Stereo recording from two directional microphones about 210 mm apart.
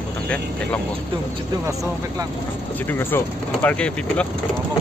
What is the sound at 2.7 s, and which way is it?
Speech, 10° left (ahead or behind).